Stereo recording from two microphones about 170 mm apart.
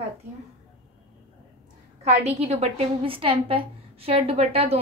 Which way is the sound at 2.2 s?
40° right (ahead or behind).